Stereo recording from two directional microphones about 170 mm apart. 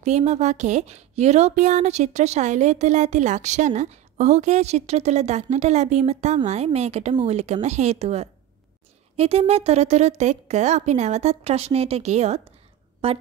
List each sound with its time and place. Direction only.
0.0 s speech: 40° right (ahead or behind)